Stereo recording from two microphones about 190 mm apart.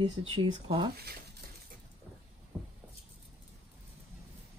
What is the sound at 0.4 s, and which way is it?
Speech, 25° right (ahead or behind).